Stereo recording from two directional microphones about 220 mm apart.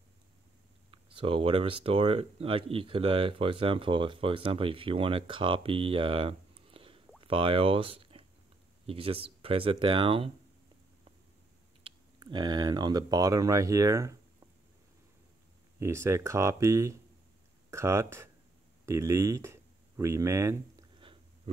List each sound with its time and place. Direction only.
0.9 s speech: 25° right (ahead or behind)
11.8 s speech: 20° right (ahead or behind)
15.8 s speech: 10° right (ahead or behind)